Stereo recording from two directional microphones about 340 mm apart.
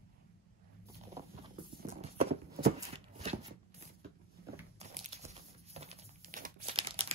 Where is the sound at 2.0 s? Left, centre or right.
Right.